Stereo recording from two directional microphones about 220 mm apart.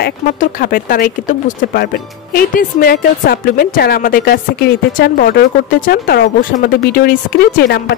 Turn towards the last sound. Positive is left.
turn(degrees=45)  # may be behind; listen again after turning